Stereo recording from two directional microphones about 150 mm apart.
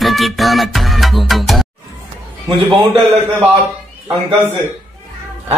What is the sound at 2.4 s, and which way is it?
Speech, 30° right (ahead or behind).